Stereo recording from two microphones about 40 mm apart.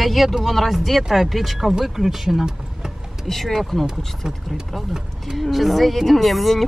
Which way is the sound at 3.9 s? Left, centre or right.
Centre.